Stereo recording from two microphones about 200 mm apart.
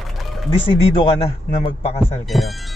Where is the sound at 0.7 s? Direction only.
30° left (ahead or behind).